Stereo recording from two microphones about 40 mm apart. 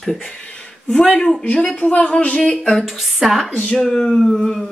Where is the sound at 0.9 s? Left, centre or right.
Left.